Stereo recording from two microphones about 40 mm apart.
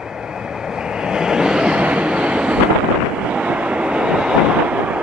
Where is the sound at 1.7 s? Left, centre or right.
Right.